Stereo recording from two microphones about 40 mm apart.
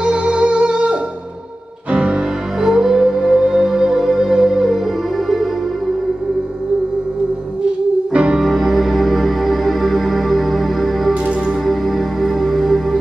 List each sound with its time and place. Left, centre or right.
0.0 s music: centre
2.6 s music: centre
8.1 s music: right
8.4 s music: centre